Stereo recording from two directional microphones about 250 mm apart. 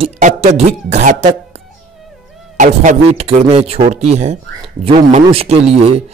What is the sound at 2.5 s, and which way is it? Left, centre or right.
A man's voice, right.